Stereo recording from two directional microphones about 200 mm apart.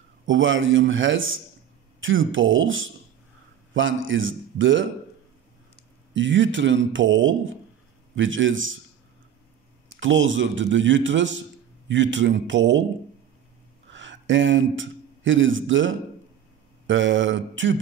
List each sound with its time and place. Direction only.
0.3 s a man's voice: 70° right (ahead or behind)
6.1 s a man's voice: 70° right (ahead or behind)
9.9 s a man's voice: 70° right (ahead or behind)
13.8 s a man's voice: 65° right (ahead or behind)